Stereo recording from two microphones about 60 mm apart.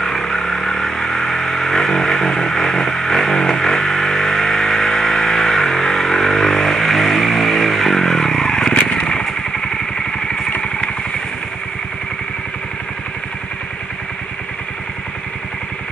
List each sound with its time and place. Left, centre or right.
0.0 s vehicle: centre
10.5 s vehicle: centre